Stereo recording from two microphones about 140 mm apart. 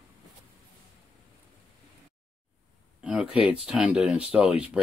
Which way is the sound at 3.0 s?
10° right (ahead or behind).